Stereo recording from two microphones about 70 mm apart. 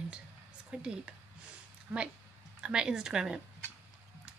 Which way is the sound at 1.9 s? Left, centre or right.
Right.